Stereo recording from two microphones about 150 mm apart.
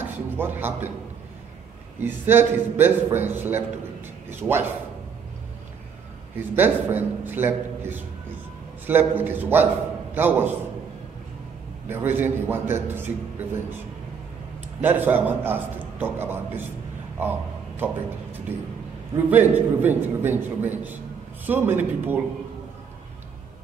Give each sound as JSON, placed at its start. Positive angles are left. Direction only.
{"t": 0.0, "sound": "a man's voice", "side_deg": -15}
{"t": 2.0, "sound": "a man's voice", "side_deg": -15}
{"t": 6.5, "sound": "a man's voice", "side_deg": -15}
{"t": 11.9, "sound": "a man's voice", "side_deg": -15}
{"t": 14.8, "sound": "a man's voice", "side_deg": -10}
{"t": 17.2, "sound": "a sound", "side_deg": -15}
{"t": 19.3, "sound": "a man's voice", "side_deg": -10}